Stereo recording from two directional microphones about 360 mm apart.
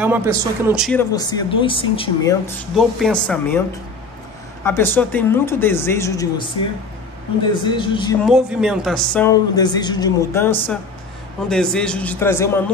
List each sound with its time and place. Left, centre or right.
0.0 s speech: centre
4.6 s speech: centre
7.6 s speech: centre
8.3 s speech: centre